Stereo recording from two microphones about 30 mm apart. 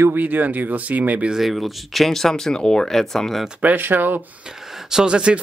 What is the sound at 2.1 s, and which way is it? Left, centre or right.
Speech, centre.